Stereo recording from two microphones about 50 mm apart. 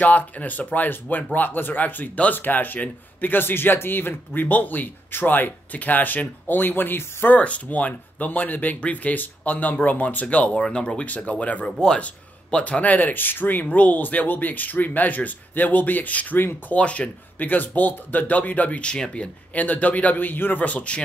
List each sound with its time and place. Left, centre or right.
0.0 s speech: left
7.2 s speech: left
11.6 s speech: centre; by 16.3 s left
16.3 s speech: left
16.7 s speech: left
18.8 s speech: centre
19.5 s speech: left
20.6 s speech: left